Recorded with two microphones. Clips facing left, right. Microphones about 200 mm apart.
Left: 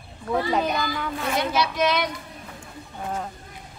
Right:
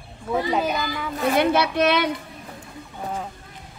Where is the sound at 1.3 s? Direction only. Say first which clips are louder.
Right 5 dB; 60° right (ahead or behind).